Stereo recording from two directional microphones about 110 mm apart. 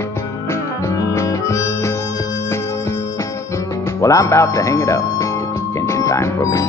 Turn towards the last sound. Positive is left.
turn(degrees=30)  # may be behind; listen again after turning